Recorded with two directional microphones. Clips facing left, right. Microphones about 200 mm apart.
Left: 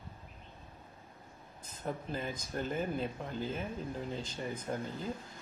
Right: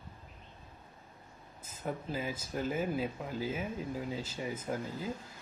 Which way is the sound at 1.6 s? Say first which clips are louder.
Right 1 dB; 5° right (ahead or behind).